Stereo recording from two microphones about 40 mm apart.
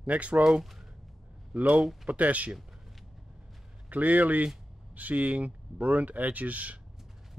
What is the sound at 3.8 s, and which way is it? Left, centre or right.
Speech, right.